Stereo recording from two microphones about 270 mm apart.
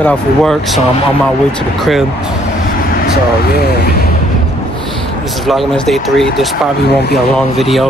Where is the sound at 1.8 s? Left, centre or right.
Centre.